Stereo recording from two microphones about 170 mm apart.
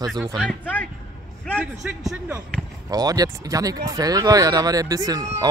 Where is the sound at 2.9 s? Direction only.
20° right (ahead or behind).